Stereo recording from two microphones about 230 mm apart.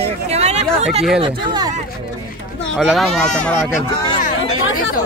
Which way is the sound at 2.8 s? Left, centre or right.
Centre.